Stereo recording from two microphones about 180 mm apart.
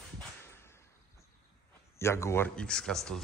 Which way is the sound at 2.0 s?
15° left (ahead or behind).